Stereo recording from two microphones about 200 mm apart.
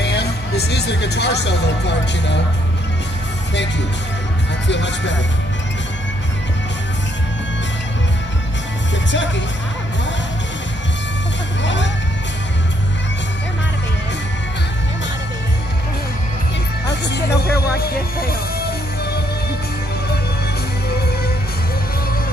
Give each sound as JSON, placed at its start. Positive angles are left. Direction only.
{"t": 0.0, "sound": "speech", "side_deg": 55}
{"t": 4.6, "sound": "speech", "side_deg": 60}
{"t": 11.6, "sound": "music", "side_deg": 65}
{"t": 16.8, "sound": "speech", "side_deg": 60}